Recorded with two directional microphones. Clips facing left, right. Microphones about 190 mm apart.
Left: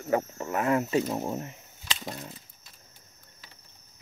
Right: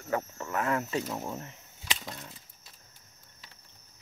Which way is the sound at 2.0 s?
25° left (ahead or behind).